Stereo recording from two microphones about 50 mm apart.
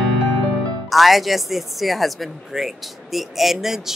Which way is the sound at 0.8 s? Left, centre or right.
Centre.